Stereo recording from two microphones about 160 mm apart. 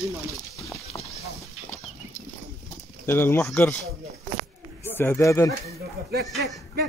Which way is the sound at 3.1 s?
15° left (ahead or behind).